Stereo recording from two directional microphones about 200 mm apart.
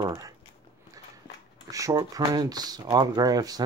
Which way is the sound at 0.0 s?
15° right (ahead or behind).